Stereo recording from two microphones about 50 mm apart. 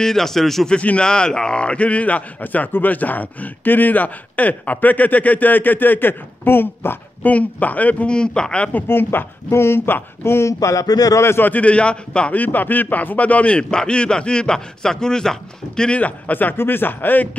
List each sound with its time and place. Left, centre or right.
0.0 s a man's voice: centre
0.7 s a man's voice: left
7.2 s a man's voice: left
8.1 s a man's voice: centre
8.8 s speech: left
10.6 s speech: left
11.3 s a man's voice: left
11.6 s a man's voice: left
12.4 s a man's voice: left; by 16.0 s centre
16.0 s a man's voice: left
16.5 s a man's voice: left